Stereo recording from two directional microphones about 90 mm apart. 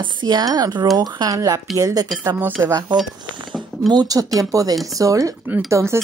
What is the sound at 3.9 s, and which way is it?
Speech, 45° right (ahead or behind).